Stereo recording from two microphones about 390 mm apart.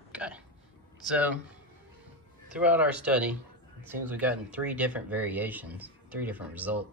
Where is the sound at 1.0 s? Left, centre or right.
Centre.